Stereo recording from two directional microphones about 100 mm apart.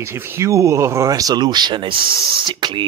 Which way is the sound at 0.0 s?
25° right (ahead or behind).